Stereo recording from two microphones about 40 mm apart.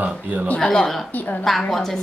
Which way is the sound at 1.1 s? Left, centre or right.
Left.